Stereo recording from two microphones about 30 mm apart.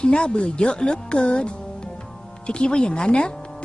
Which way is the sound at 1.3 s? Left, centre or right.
Left.